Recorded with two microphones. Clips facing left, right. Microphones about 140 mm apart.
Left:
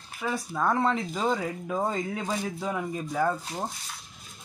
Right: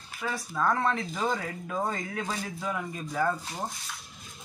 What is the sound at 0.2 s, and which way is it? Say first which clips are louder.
Speech: left 1 dB; 15° left (ahead or behind).